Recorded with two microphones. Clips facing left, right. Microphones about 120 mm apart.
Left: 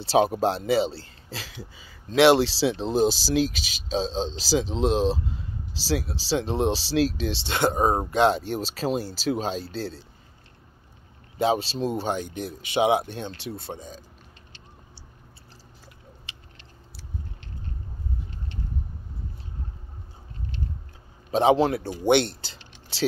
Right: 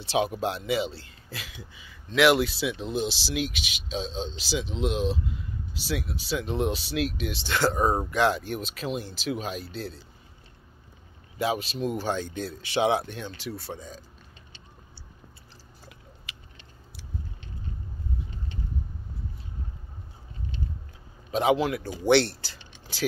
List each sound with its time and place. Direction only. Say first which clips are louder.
0.0 s speech: left 5 dB; 35° left (ahead or behind)
11.3 s speech: left 4 dB; 30° left (ahead or behind)
16.3 s biting: right 2 dB; 25° left (ahead or behind)
21.3 s speech: left 4 dB; 30° left (ahead or behind)